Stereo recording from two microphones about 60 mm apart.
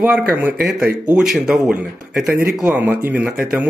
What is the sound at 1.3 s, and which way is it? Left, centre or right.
Speech, centre.